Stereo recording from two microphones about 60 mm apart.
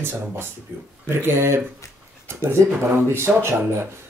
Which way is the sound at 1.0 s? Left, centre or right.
Right.